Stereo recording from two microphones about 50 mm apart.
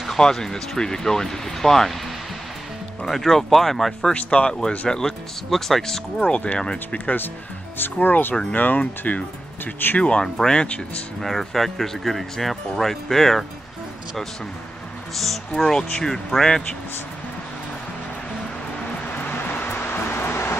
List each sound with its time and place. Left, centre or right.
0.2 s speech: centre
3.1 s speech: centre
4.1 s speech: left
6.2 s speech: left
7.7 s speech: left
10.2 s speech: centre
11.1 s speech: centre
15.1 s speech: centre
19.1 s music: left